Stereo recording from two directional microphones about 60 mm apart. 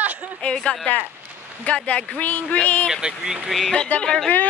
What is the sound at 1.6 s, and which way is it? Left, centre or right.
Speech, left.